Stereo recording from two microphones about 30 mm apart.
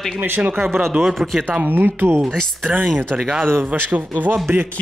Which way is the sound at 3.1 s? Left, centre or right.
Right.